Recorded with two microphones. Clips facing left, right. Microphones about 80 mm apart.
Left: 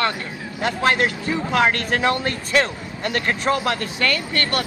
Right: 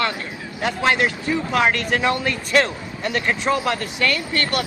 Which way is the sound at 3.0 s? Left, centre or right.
Left.